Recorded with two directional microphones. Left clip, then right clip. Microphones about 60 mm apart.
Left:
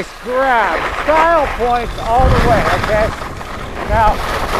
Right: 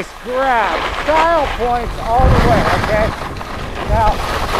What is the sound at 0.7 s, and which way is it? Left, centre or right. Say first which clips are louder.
Speech: left 1 dB; right.